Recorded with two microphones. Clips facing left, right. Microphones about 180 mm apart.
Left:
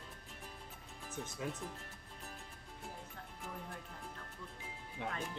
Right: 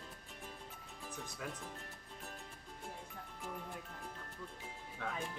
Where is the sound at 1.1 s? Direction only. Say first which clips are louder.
Left 4 dB; 25° left (ahead or behind).